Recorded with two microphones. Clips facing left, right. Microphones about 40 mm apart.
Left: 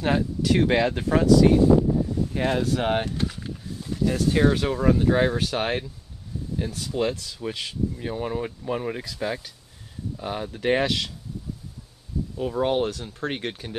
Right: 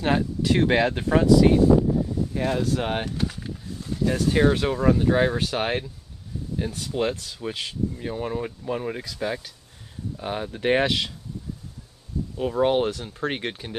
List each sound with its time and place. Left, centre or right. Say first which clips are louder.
0.0 s speech: right 1 dB; centre
2.3 s speech: left 1 dB; left
2.6 s speech: left 2 dB; centre
3.3 s a sound: even; centre
4.1 s speech: right 1 dB; centre
6.9 s speech: even; centre
10.1 s speech: right 1 dB; right
12.4 s speech: right 2 dB; centre